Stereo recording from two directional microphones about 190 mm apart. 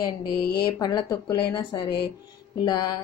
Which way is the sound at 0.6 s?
20° left (ahead or behind).